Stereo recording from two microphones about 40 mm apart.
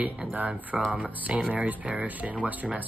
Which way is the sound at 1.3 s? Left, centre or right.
Right.